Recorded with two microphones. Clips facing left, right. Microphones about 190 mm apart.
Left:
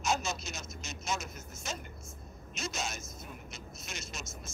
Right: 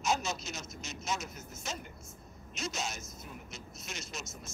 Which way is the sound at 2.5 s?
50° left (ahead or behind).